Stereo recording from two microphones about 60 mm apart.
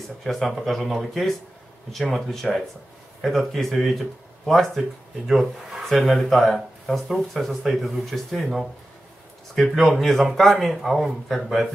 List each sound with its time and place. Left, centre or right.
0.2 s speech: centre